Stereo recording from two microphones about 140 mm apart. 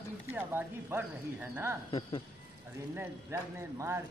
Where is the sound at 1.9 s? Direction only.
35° left (ahead or behind).